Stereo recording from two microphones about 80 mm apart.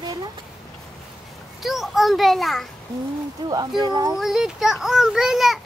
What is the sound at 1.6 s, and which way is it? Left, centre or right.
A child's voice, centre.